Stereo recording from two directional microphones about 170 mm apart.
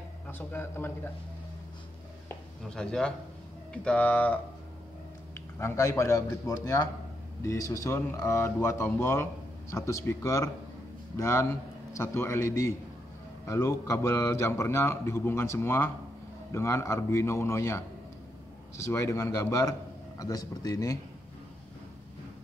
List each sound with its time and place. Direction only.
0.3 s speech: 10° left (ahead or behind)
2.2 s a sound: 5° left (ahead or behind)
3.7 s speech: 5° left (ahead or behind)
5.6 s a man's voice: 15° left (ahead or behind)
18.9 s a man's voice: 15° left (ahead or behind)